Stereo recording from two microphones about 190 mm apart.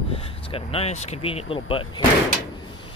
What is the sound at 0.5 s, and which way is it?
Speech, 30° left (ahead or behind).